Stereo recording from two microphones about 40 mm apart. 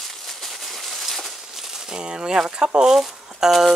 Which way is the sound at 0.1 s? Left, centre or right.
Centre.